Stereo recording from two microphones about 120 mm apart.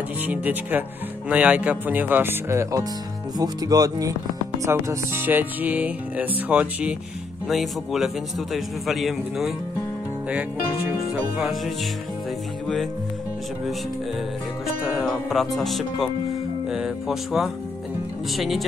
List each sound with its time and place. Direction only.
0.3 s music: 15° right (ahead or behind)
3.3 s speech: 30° right (ahead or behind)
4.6 s music: 20° right (ahead or behind)
7.4 s speech: centre (ahead or behind)
11.3 s speech: 5° right (ahead or behind)
15.0 s speech: centre (ahead or behind)